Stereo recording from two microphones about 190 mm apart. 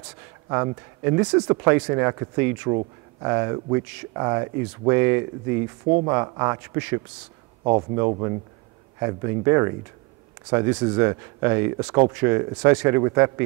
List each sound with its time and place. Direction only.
1.0 s speech: 20° right (ahead or behind)
7.6 s speech: 25° right (ahead or behind)